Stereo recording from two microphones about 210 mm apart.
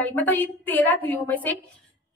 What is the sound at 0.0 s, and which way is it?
A woman's voice, 10° left (ahead or behind).